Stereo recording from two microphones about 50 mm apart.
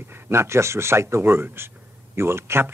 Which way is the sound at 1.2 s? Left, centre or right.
Right.